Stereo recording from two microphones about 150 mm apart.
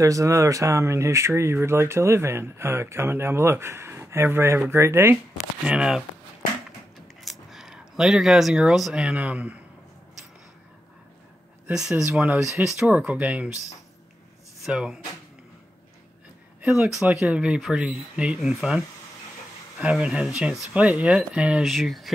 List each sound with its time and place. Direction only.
0.0 s speech: 20° right (ahead or behind); by 6.0 s 5° right (ahead or behind)
7.2 s speech: centre (ahead or behind)
11.6 s speech: 5° right (ahead or behind)
14.6 s speech: 5° right (ahead or behind)
16.6 s speech: 5° right (ahead or behind)
19.8 s speech: 10° right (ahead or behind)